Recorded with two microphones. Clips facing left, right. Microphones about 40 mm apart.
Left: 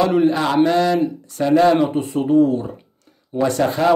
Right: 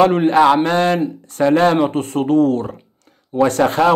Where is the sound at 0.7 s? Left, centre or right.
Right.